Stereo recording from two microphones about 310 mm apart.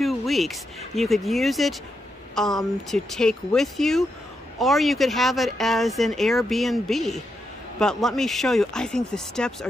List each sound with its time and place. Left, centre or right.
0.0 s speech: centre